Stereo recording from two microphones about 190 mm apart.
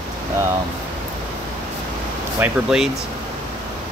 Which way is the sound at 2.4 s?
5° right (ahead or behind).